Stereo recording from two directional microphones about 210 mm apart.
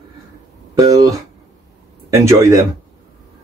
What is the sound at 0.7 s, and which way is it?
A man's voice, 15° right (ahead or behind).